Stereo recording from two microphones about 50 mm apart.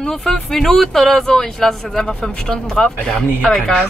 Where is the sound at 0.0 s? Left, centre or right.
Centre.